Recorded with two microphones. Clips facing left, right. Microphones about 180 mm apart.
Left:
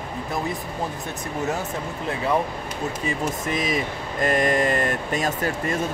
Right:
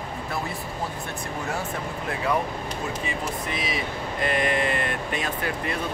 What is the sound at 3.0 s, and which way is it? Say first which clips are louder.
Speech: left 4 dB; 45° left (ahead or behind).